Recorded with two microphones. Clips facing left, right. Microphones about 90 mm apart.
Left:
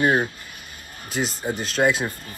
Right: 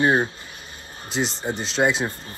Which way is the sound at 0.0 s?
25° right (ahead or behind).